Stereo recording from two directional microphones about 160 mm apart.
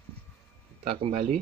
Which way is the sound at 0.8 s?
35° right (ahead or behind).